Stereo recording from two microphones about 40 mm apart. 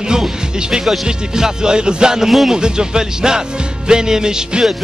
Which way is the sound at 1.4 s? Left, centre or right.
Right.